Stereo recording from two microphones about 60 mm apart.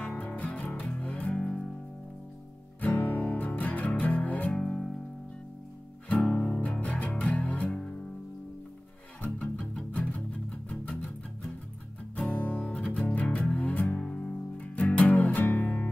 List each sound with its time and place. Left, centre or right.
0.1 s music: left
2.8 s music: left
4.6 s music: centre
6.2 s music: centre
6.8 s music: left
9.2 s music: left
12.2 s music: left